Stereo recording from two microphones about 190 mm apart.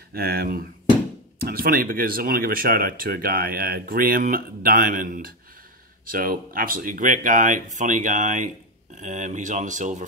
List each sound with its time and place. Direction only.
0.1 s speech: 55° right (ahead or behind)